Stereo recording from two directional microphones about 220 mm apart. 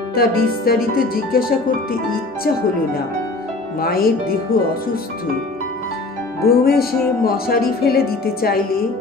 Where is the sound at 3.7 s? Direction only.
45° left (ahead or behind).